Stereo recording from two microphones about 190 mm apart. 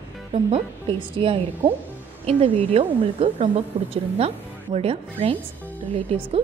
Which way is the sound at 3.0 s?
30° right (ahead or behind).